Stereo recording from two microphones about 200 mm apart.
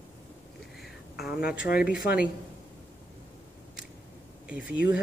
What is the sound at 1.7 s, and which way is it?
Speech, 50° left (ahead or behind).